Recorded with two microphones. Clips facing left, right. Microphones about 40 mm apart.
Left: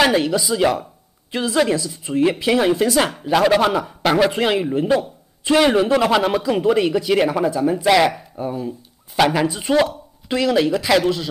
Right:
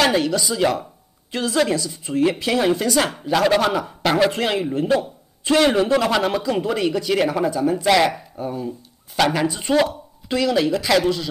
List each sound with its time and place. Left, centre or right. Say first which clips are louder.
0.0 s a man's voice: left 2 dB; centre